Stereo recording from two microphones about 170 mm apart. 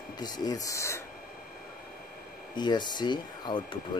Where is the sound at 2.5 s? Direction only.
25° left (ahead or behind).